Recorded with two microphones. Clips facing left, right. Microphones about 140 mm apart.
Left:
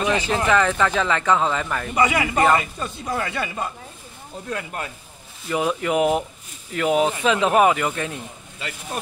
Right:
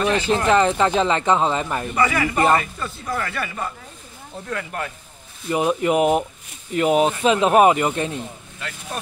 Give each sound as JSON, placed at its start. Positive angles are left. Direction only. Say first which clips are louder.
{"t": 0.0, "sound": "speech", "louder": "right 1 dB", "side_deg": 15}
{"t": 0.5, "sound": "speech", "louder": "right 2 dB", "side_deg": -25}
{"t": 2.0, "sound": "speech", "louder": "left 1 dB", "side_deg": 20}
{"t": 5.5, "sound": "speech", "louder": "right 3 dB", "side_deg": -25}